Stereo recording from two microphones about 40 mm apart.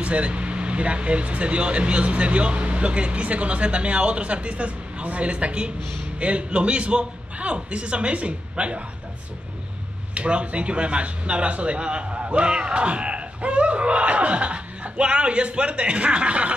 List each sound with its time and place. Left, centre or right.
0.0 s speech: right
10.1 s speech: right